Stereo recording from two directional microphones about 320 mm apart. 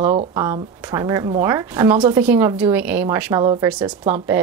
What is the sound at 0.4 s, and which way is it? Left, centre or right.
A woman's voice, centre.